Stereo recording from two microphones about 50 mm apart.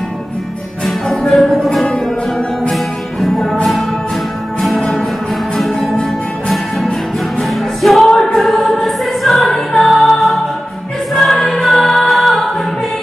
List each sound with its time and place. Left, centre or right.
0.8 s music: centre
4.6 s music: centre
8.1 s choir: centre
8.4 s music: centre